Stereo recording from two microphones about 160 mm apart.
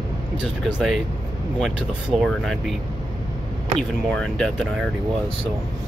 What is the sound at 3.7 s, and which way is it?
Speech, 5° left (ahead or behind).